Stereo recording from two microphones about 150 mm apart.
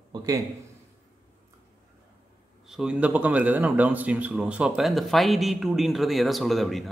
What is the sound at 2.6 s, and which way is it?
Speech, 5° right (ahead or behind).